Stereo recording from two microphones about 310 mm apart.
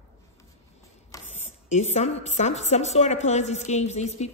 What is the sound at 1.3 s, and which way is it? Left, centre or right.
A woman's voice, left.